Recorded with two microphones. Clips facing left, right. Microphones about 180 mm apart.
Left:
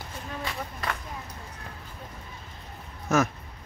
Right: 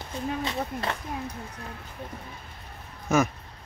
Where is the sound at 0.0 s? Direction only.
20° right (ahead or behind).